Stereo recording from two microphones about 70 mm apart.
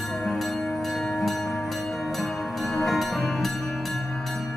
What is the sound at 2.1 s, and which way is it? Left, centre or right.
Music, centre.